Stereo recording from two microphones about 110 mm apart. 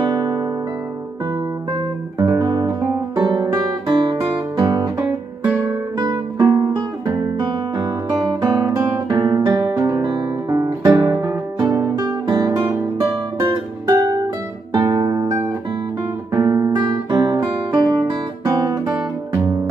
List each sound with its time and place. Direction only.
0.0 s music: 40° right (ahead or behind)
2.1 s guitar: 35° right (ahead or behind)
5.9 s music: 35° right (ahead or behind)
7.1 s guitar: 40° right (ahead or behind)
13.8 s music: 30° right (ahead or behind)
14.7 s music: 40° right (ahead or behind)
15.1 s music: 25° right (ahead or behind)
16.3 s guitar: 35° right (ahead or behind)